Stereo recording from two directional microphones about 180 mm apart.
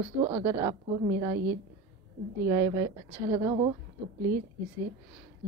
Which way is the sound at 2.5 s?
20° right (ahead or behind).